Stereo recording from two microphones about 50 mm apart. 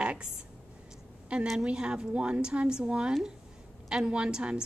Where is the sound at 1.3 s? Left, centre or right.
Right.